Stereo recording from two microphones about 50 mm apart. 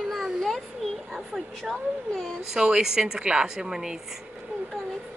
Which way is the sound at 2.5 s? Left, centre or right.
Centre.